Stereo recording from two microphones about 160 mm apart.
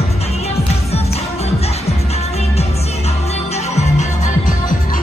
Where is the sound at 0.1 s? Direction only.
40° left (ahead or behind).